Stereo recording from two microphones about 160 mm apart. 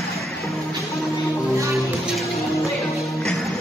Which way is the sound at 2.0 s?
Centre (ahead or behind).